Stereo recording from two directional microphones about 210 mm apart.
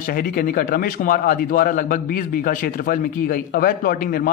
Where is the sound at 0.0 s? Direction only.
45° left (ahead or behind).